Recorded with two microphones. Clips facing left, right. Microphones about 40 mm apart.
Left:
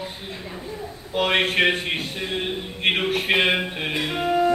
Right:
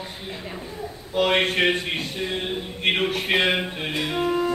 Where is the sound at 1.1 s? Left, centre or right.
Centre.